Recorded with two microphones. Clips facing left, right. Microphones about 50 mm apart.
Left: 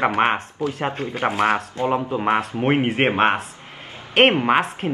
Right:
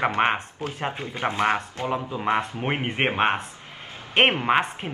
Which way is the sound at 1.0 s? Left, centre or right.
Centre.